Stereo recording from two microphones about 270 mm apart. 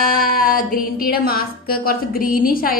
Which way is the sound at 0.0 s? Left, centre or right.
Left.